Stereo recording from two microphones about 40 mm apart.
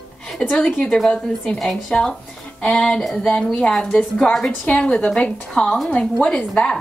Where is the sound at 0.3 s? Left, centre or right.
Centre.